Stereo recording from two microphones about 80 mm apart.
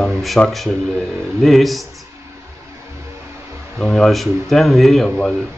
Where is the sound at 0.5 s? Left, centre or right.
Centre.